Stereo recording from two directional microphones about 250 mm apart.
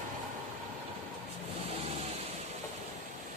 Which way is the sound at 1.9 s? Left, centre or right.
Right.